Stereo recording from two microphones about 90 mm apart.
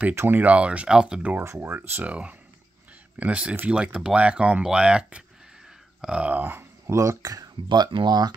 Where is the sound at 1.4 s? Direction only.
30° right (ahead or behind).